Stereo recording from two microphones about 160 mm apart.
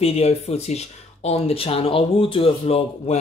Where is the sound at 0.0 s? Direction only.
40° left (ahead or behind).